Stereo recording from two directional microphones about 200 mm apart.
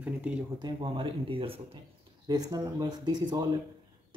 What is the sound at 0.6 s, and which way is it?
Speech, 25° right (ahead or behind).